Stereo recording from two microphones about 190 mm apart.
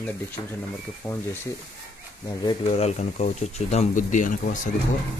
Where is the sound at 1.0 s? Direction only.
10° left (ahead or behind).